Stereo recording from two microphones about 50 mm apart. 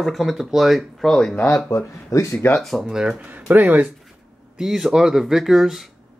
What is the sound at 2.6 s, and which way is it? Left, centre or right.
Speech, centre.